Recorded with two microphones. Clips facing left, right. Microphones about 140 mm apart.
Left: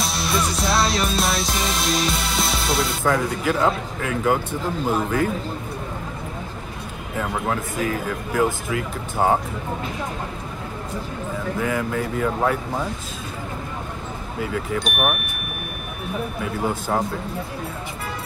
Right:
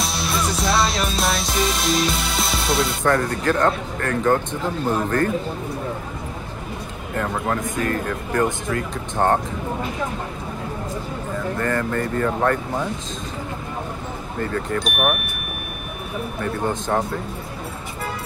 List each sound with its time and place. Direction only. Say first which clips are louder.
0.0 s music: even; centre (ahead or behind)
7.2 s speech: right 1 dB; 5° left (ahead or behind)
11.3 s speech: right 1 dB; 5° left (ahead or behind)
14.4 s speech: right 1 dB; 5° left (ahead or behind)
16.3 s speech: right 3 dB; 5° left (ahead or behind)